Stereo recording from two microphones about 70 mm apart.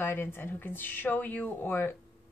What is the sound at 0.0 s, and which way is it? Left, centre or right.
Speech, left.